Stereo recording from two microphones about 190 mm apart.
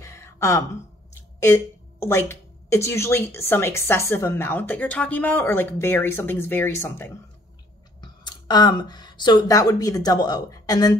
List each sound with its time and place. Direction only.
0.0 s gasp: 15° left (ahead or behind)
1.4 s speech: 15° left (ahead or behind)